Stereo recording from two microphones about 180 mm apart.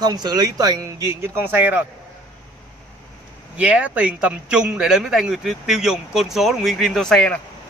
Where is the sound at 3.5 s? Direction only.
5° right (ahead or behind).